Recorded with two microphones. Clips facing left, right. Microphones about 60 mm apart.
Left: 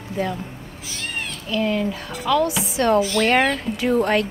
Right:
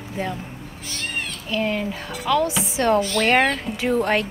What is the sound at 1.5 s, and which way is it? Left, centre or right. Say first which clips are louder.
Speech: left 2 dB; right.